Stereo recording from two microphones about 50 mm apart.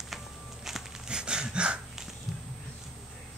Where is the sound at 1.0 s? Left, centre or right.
Centre.